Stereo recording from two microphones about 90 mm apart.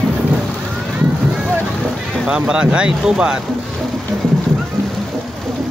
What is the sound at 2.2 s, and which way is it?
Speech, 10° right (ahead or behind).